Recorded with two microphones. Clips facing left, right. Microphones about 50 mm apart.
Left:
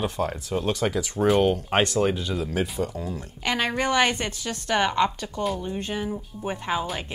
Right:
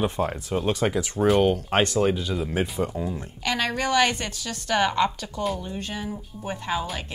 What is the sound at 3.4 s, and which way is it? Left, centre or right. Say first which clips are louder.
A woman's voice: left 1 dB; centre.